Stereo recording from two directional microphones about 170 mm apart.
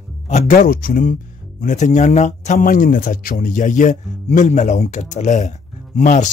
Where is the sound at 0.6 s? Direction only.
55° left (ahead or behind).